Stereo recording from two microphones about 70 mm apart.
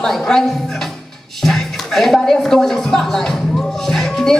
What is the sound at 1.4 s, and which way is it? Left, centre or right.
Speech, centre.